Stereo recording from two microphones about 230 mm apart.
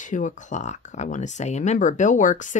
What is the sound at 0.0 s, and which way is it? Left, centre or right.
Speech, left.